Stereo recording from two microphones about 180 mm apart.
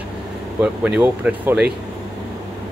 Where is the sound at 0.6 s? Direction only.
5° right (ahead or behind).